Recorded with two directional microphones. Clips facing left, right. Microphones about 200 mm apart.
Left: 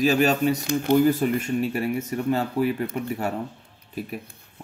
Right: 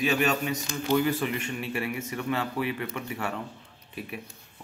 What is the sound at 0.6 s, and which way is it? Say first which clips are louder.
Speech: left 6 dB; 55° left (ahead or behind).